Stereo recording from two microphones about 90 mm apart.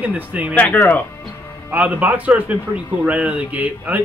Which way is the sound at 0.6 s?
20° left (ahead or behind).